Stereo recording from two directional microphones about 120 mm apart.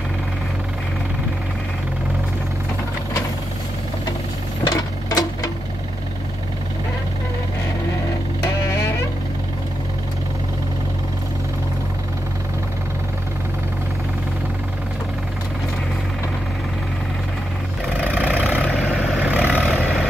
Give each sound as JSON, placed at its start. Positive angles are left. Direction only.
{"t": 4.6, "sound": "sewing machine", "side_deg": 30}
{"t": 18.0, "sound": "vehicle", "side_deg": -10}
{"t": 19.6, "sound": "vehicle", "side_deg": 0}